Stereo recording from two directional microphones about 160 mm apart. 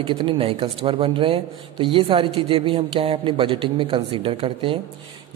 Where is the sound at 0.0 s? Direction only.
30° right (ahead or behind).